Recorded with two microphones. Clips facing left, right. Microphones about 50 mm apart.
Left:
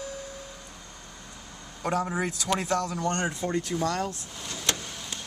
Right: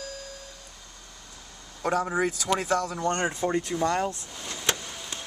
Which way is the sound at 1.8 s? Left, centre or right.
Centre.